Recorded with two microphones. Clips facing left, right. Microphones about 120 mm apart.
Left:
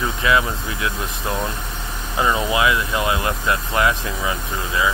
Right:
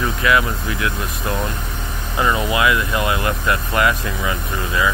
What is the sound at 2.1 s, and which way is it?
Speech, 15° left (ahead or behind).